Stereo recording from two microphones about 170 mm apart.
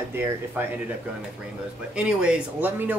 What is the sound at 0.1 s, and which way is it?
Speech, 15° right (ahead or behind).